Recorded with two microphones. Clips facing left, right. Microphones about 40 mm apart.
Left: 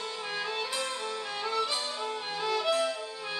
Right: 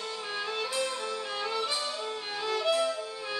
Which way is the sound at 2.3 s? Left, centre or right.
Centre.